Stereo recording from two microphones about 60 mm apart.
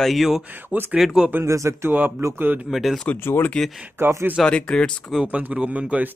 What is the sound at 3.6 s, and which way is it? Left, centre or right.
Speech, centre.